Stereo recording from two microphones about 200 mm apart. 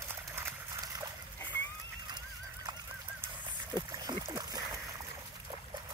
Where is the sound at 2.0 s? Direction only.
20° right (ahead or behind).